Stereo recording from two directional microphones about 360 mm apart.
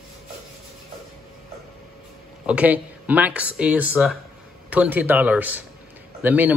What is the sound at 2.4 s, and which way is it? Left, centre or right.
Speech, centre.